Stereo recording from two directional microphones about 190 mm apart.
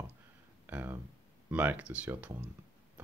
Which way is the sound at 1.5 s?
10° right (ahead or behind).